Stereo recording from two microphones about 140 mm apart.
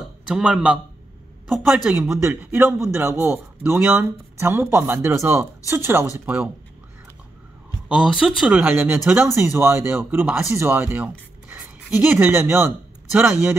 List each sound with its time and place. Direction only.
0.3 s speech: 10° right (ahead or behind)
2.0 s speech: 10° right (ahead or behind)
7.9 s speech: 5° right (ahead or behind)
9.1 s speech: 15° right (ahead or behind)